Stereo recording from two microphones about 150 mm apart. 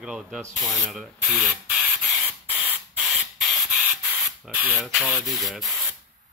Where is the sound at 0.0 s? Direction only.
5° right (ahead or behind).